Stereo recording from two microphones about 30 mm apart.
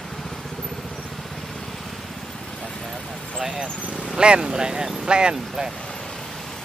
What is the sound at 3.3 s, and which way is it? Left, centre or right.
Vehicle, right.